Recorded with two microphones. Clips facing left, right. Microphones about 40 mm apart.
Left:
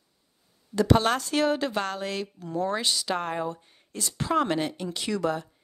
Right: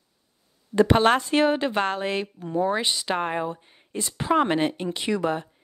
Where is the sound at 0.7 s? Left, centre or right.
Right.